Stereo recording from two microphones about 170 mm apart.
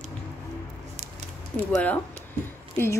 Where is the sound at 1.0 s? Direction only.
40° right (ahead or behind).